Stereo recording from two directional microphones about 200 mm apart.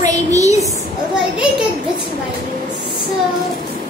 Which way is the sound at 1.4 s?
5° right (ahead or behind).